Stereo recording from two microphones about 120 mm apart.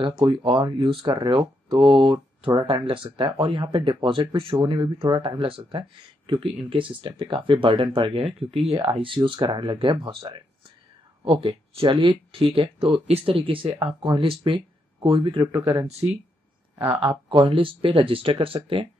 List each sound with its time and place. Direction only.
0.0 s speech: 40° right (ahead or behind)
17.3 s speech: 45° right (ahead or behind)